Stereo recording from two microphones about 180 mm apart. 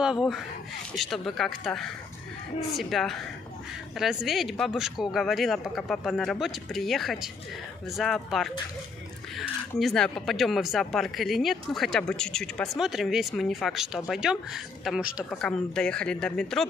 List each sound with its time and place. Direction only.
0.0 s speech: centre (ahead or behind)